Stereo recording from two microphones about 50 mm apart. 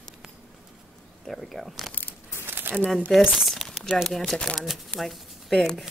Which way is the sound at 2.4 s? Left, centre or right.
Right.